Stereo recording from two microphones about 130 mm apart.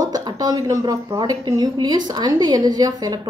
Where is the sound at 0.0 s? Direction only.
30° right (ahead or behind).